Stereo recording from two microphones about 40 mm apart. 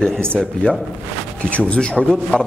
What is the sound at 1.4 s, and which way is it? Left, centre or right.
Speech, left.